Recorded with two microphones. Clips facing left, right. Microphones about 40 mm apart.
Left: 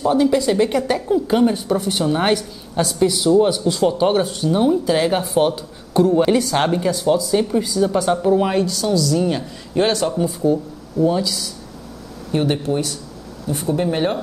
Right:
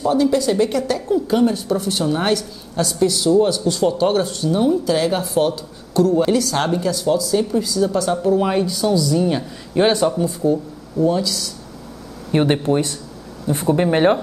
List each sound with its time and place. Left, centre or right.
0.0 s a woman's voice: centre
8.5 s a man's voice: centre
10.1 s speech: centre
12.3 s speech: right